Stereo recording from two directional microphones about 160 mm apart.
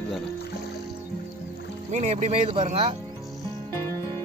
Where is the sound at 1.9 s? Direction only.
45° right (ahead or behind).